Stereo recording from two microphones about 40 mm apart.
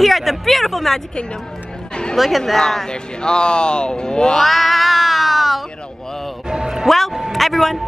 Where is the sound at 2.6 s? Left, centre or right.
Centre.